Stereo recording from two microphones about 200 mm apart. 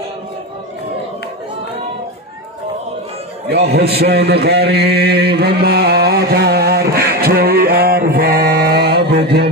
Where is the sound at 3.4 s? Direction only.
55° right (ahead or behind).